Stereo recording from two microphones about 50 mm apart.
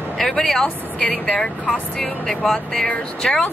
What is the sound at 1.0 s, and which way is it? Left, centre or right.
Speech, left.